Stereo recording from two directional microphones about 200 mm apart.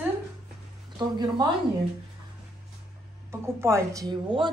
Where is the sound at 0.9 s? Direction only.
25° right (ahead or behind).